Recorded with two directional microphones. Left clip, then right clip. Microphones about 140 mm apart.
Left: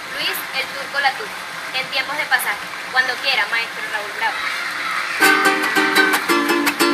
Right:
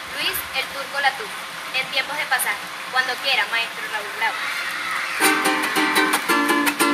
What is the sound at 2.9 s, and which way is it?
Speech, 20° right (ahead or behind).